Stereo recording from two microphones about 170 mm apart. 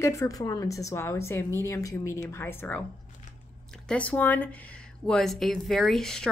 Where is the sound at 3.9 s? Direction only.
10° left (ahead or behind).